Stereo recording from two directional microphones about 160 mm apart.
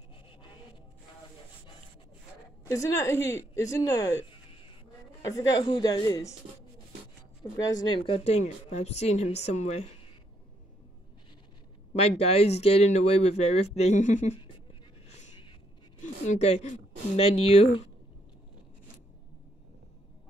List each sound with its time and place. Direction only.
2.7 s speech: 20° left (ahead or behind)
7.5 s speech: 25° left (ahead or behind)
8.1 s speech: 45° left (ahead or behind)
11.9 s speech: 40° left (ahead or behind)
16.0 s a woman's voice: 45° left (ahead or behind)